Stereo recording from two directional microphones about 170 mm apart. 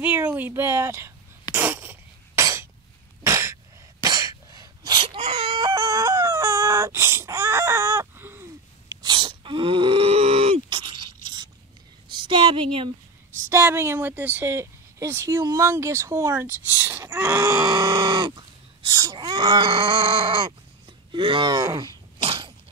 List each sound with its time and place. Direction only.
0.0 s speech: 10° right (ahead or behind)
1.5 s a sound: 10° right (ahead or behind)
3.3 s sneeze: 15° right (ahead or behind)
4.0 s wail: 20° right (ahead or behind)
9.0 s gasp: 30° right (ahead or behind)
12.1 s a sound: 30° right (ahead or behind)
13.5 s speech: 15° right (ahead or behind); by 20.5 s 30° right (ahead or behind)
21.1 s sneeze: 30° right (ahead or behind)